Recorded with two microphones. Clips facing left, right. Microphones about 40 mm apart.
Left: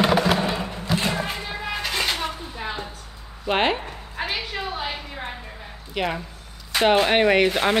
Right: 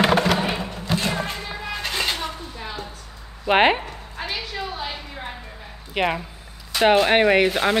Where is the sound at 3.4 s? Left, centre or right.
Right.